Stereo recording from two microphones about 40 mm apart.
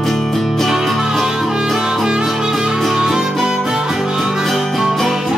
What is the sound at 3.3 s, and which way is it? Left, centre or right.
Harmonica, centre.